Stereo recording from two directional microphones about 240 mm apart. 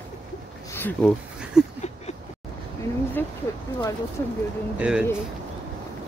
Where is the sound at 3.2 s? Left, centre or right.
Centre.